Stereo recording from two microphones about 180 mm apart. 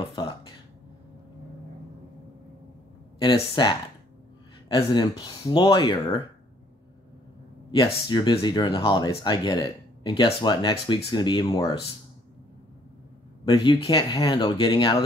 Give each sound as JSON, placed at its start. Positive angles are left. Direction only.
{"t": 0.0, "sound": "a sound", "side_deg": 25}
{"t": 3.2, "sound": "speech", "side_deg": 25}
{"t": 4.7, "sound": "speech", "side_deg": 20}
{"t": 7.7, "sound": "speech", "side_deg": 25}
{"t": 13.5, "sound": "speech", "side_deg": 25}